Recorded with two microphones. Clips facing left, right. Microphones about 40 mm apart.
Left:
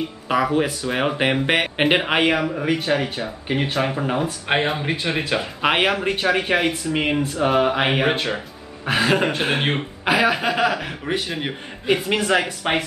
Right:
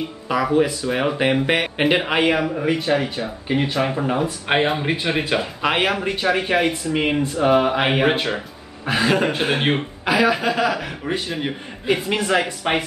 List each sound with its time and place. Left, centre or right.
0.3 s speech: left
0.8 s speech: centre
2.2 s speech: centre
5.6 s speech: centre
6.2 s speech: centre
8.9 s speech: centre
10.0 s speech: centre
10.7 s speech: centre